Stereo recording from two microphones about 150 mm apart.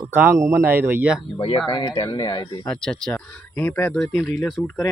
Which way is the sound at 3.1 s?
15° left (ahead or behind).